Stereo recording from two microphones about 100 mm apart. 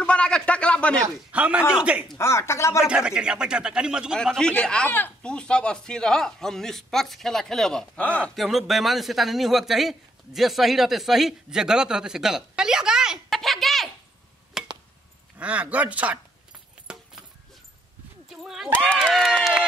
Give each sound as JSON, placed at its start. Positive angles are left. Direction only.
{"t": 0.0, "sound": "a sound", "side_deg": 10}
{"t": 1.3, "sound": "a man's voice", "side_deg": -15}
{"t": 2.1, "sound": "speech", "side_deg": 25}
{"t": 2.8, "sound": "a man's voice", "side_deg": -5}
{"t": 4.2, "sound": "speech", "side_deg": 5}
{"t": 8.4, "sound": "speech", "side_deg": 0}
{"t": 14.6, "sound": "chop", "side_deg": -5}
{"t": 15.3, "sound": "a man's voice", "side_deg": -15}
{"t": 16.8, "sound": "a sound", "side_deg": -10}
{"t": 18.3, "sound": "a sound", "side_deg": -5}
{"t": 19.0, "sound": "speech", "side_deg": 0}